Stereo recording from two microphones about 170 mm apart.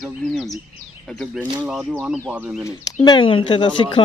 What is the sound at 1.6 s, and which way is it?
Speech, 5° right (ahead or behind).